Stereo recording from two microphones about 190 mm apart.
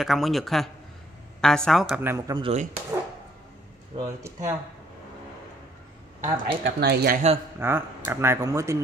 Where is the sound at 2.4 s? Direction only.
35° right (ahead or behind).